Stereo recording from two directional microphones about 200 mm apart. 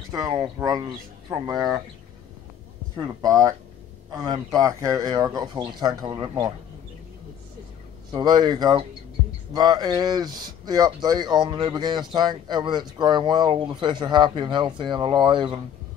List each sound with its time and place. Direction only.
0.1 s speech: 20° right (ahead or behind)
3.0 s speech: 20° right (ahead or behind)
8.1 s speech: 20° right (ahead or behind)